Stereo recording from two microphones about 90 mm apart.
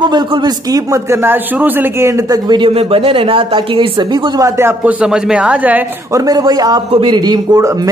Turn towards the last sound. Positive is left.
turn(degrees=-50)  # may be behind; listen again after turning